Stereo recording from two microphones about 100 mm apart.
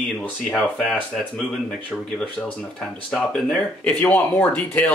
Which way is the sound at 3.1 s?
5° left (ahead or behind).